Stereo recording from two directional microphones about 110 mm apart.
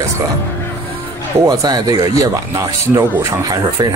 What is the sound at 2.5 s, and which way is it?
Speech, 25° right (ahead or behind).